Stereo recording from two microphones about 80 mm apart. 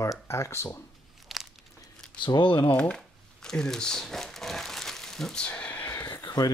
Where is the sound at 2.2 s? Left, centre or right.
Left.